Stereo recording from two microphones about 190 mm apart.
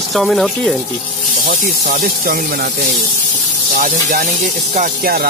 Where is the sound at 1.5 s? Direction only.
45° right (ahead or behind).